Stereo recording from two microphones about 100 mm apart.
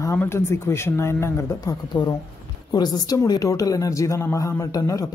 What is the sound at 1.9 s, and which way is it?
Speech, 50° left (ahead or behind).